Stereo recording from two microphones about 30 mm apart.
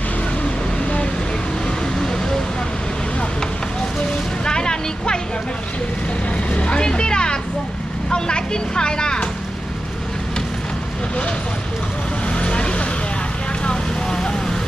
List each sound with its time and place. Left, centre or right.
2.0 s vehicle: left
4.5 s vehicle: left
6.3 s vehicle: left
8.1 s a sound: left
12.4 s vehicle: left
13.7 s vehicle: left